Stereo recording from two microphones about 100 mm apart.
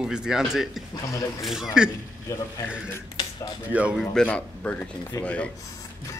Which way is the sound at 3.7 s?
15° right (ahead or behind).